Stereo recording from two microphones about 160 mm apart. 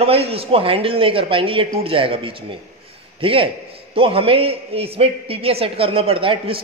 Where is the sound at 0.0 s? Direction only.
40° right (ahead or behind).